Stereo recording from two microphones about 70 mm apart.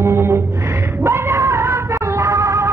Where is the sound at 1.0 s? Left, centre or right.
Right.